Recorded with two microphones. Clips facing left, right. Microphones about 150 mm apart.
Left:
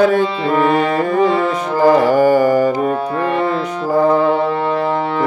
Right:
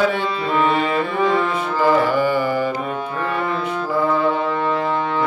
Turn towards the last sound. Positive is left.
turn(degrees=45)  # may be behind; listen again after turning